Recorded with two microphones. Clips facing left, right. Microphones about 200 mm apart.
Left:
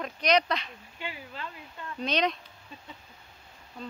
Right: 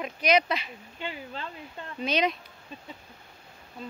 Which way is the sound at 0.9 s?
25° right (ahead or behind).